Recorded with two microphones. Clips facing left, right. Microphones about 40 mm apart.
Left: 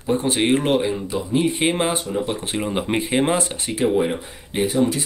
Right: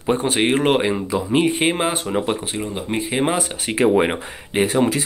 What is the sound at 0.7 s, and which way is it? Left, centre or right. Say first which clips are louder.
Speech: right 2 dB; right.